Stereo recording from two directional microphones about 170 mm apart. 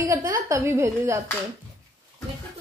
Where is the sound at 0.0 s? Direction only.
20° right (ahead or behind).